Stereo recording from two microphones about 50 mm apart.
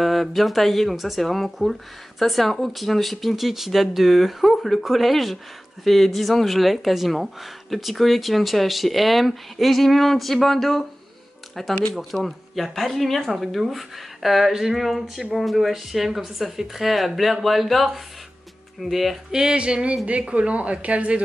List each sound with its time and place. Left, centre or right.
0.0 s speech: centre
19.3 s speech: centre